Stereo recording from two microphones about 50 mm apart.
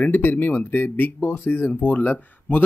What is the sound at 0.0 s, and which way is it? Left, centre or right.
Speech, left.